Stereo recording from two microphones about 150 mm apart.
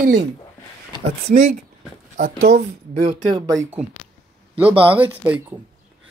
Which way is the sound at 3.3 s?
20° right (ahead or behind).